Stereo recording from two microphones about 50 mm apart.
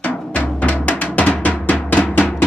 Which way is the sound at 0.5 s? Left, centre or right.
Left.